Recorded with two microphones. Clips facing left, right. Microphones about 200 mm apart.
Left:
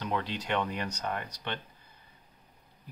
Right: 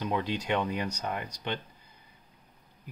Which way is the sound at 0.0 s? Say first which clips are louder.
Right 3 dB; 15° right (ahead or behind).